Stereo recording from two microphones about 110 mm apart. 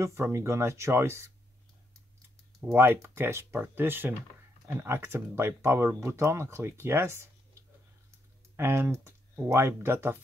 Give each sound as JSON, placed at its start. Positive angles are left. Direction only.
{"t": 0.0, "sound": "speech", "side_deg": -25}
{"t": 2.6, "sound": "speech", "side_deg": -20}
{"t": 8.5, "sound": "speech", "side_deg": -20}